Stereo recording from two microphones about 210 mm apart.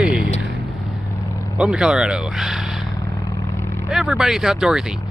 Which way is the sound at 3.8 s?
Centre (ahead or behind).